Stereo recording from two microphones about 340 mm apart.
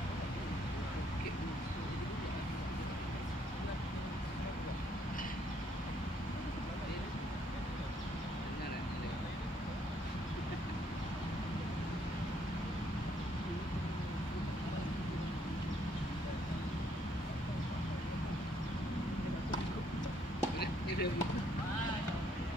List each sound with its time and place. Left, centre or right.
20.5 s chop: left